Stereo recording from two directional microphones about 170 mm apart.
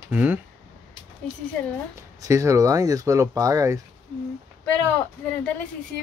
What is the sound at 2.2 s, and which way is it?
Speech, 15° right (ahead or behind).